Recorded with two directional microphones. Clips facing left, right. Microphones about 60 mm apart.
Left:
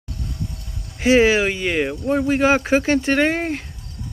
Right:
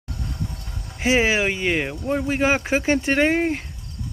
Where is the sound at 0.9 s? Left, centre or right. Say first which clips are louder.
Left 5 dB; centre.